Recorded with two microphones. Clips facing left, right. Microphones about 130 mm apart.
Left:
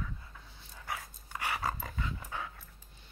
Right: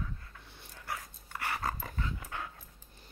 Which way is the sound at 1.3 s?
15° left (ahead or behind).